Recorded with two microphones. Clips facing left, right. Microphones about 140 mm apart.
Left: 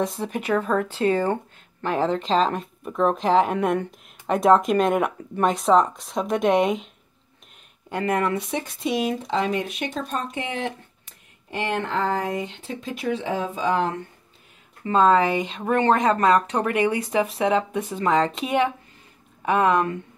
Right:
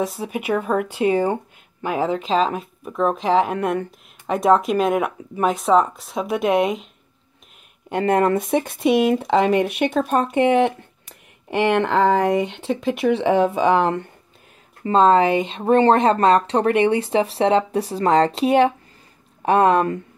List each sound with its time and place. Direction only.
0.0 s speech: 5° right (ahead or behind)
7.9 s speech: 30° right (ahead or behind)
8.3 s speech: 50° right (ahead or behind)
14.9 s speech: 25° right (ahead or behind)